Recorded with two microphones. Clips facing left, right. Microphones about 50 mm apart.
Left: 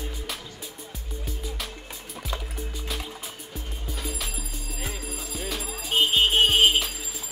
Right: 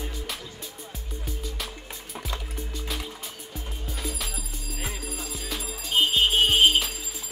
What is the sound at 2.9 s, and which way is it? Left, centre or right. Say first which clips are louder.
Music: even; centre.